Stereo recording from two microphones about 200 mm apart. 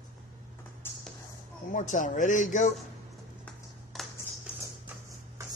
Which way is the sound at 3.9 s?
Centre (ahead or behind).